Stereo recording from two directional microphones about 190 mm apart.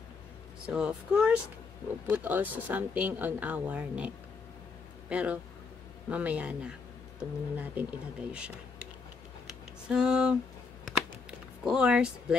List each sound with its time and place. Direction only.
0.7 s speech: 5° right (ahead or behind)
5.1 s speech: 5° right (ahead or behind)
9.8 s speech: 5° right (ahead or behind)
10.9 s a sound: 5° right (ahead or behind)